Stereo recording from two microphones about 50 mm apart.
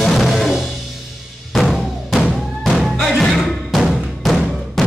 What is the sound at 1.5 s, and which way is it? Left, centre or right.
Music, centre.